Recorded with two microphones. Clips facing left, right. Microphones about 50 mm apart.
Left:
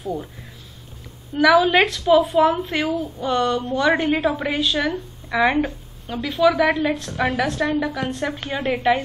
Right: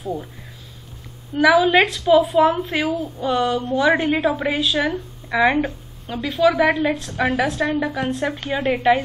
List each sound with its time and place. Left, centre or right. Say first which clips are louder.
1.4 s a woman's voice: even; centre
7.7 s a woman's voice: even; centre
8.0 s a woman's voice: right 2 dB; centre